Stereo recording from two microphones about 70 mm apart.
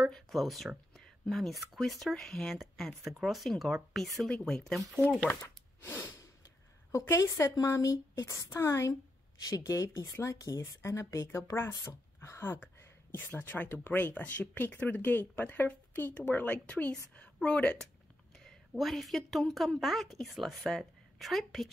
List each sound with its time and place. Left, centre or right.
0.1 s speech: centre
5.3 s a sound: left
6.9 s a woman's voice: left
13.1 s a woman's voice: left
18.4 s a woman's voice: centre